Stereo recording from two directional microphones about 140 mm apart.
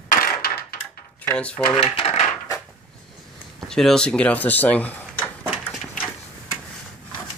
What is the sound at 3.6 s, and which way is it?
Speech, 5° left (ahead or behind).